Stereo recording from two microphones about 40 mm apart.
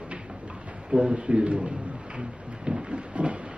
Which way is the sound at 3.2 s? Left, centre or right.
Right.